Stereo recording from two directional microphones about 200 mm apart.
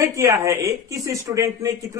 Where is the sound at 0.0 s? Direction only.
15° right (ahead or behind).